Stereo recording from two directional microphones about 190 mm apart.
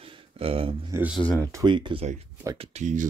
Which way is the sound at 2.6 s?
40° right (ahead or behind).